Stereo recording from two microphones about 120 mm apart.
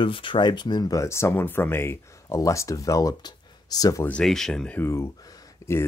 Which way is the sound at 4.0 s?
5° left (ahead or behind).